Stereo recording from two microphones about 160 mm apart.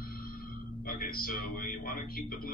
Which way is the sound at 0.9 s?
65° left (ahead or behind).